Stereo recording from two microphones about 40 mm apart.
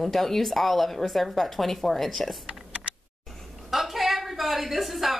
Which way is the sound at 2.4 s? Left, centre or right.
Right.